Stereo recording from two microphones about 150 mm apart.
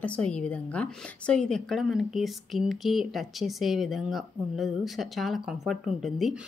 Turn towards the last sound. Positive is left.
turn(degrees=0)  # may be behind; listen again after turning